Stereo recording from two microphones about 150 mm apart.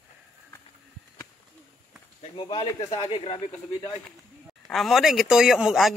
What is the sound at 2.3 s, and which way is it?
Speech, 30° left (ahead or behind).